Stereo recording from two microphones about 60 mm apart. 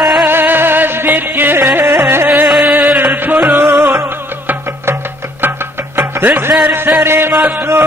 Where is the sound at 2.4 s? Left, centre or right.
Centre.